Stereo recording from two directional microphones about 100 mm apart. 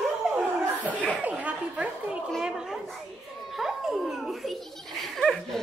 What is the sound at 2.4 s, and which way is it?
Children playing, 5° right (ahead or behind).